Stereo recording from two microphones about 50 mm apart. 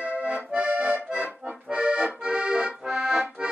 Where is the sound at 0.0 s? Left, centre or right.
Right.